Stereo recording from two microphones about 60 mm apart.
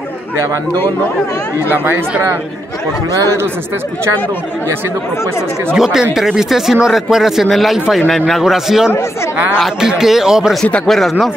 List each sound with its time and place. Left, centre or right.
1.7 s speech: right
5.8 s speech: centre
10.9 s speech: centre